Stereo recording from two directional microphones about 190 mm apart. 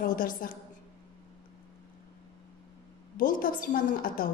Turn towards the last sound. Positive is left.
turn(degrees=50)  # may be behind; listen again after turning